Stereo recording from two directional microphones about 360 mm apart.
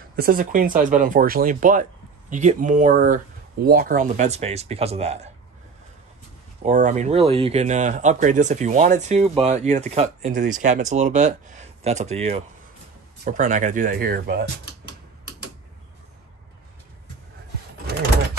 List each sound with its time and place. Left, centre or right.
0.1 s speech: right
6.6 s speech: centre